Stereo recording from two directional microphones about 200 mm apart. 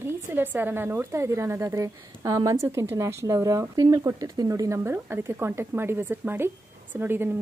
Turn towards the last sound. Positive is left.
turn(degrees=-10)  # may be behind; listen again after turning